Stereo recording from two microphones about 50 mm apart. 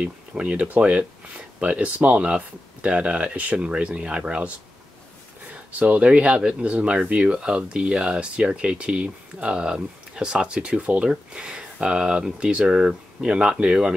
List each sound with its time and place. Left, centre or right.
0.0 s speech: right
5.5 s speech: right